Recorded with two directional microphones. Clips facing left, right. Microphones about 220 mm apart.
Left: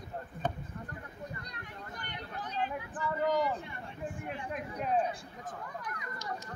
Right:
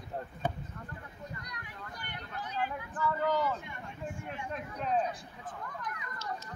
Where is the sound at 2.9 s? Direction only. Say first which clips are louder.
Even; 20° left (ahead or behind).